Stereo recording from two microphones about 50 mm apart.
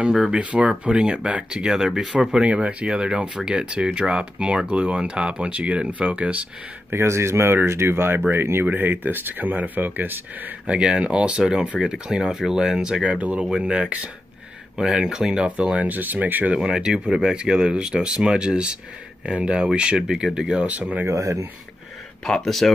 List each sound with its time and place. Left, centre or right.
0.1 s speech: centre
0.4 s speech: right; by 2.3 s centre
2.3 s speech: right
6.9 s speech: right
8.6 s speech: right
10.7 s speech: centre
13.0 s speech: right
13.4 s speech: centre
15.7 s speech: right
16.5 s speech: centre
20.6 s speech: right
21.1 s speech: right
22.2 s speech: centre